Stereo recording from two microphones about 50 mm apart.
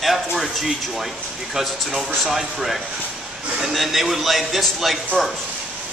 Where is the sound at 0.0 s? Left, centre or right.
Centre.